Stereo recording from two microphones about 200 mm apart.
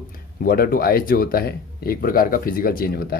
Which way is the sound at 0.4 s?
45° left (ahead or behind).